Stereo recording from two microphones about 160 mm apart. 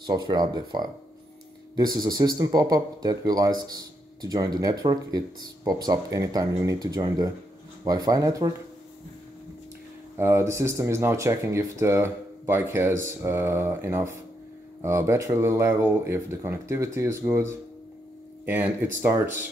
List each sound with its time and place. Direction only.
0.0 s a man's voice: 25° right (ahead or behind)
10.1 s speech: 15° right (ahead or behind)